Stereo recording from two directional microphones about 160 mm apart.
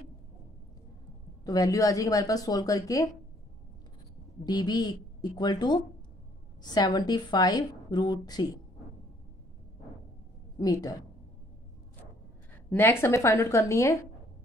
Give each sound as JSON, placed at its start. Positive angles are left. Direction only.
{"t": 1.4, "sound": "a woman's voice", "side_deg": 20}
{"t": 4.5, "sound": "a woman's voice", "side_deg": 25}
{"t": 10.6, "sound": "a woman's voice", "side_deg": 20}
{"t": 12.6, "sound": "a woman's voice", "side_deg": 10}